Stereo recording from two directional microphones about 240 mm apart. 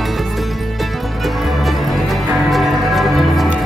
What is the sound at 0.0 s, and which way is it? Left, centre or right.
Music, centre.